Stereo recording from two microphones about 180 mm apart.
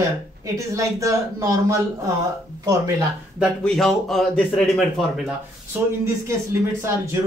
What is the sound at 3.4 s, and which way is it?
A man's voice, centre (ahead or behind).